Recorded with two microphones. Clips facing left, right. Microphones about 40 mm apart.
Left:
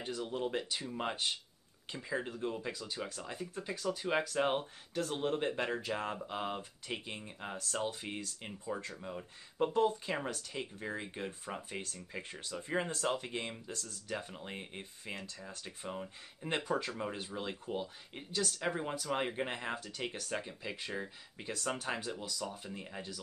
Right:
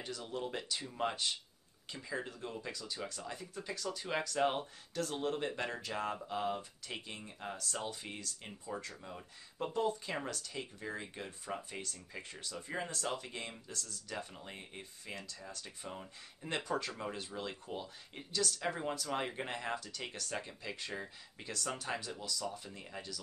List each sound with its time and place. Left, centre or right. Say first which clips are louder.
0.0 s speech: left 4 dB; left
8.5 s speech: left 2 dB; centre
10.3 s speech: left 2 dB; left
15.6 s speech: left 8 dB; centre